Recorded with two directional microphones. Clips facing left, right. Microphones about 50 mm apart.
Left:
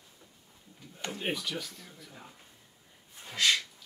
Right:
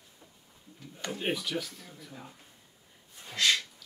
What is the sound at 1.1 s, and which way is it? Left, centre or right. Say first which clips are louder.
Speech: right 3 dB; centre.